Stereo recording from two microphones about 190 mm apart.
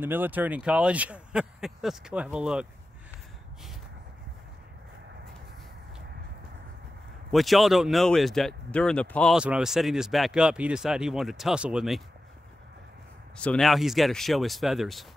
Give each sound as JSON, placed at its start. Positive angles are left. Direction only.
{"t": 0.0, "sound": "speech", "side_deg": -10}
{"t": 7.2, "sound": "speech", "side_deg": 0}
{"t": 13.4, "sound": "speech", "side_deg": 5}